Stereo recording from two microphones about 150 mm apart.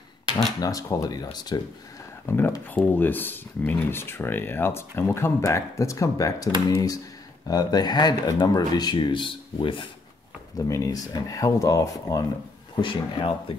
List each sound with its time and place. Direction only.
0.6 s speech: 25° left (ahead or behind)
2.2 s speech: 15° left (ahead or behind); by 9.8 s 35° left (ahead or behind)
10.6 s speech: 20° left (ahead or behind)
12.8 s speech: 35° left (ahead or behind)